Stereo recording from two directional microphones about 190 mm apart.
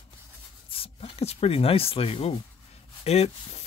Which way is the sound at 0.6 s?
30° left (ahead or behind).